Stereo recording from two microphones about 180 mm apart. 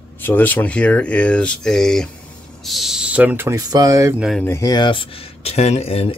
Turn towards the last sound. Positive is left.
turn(degrees=35)  # may be behind; listen again after turning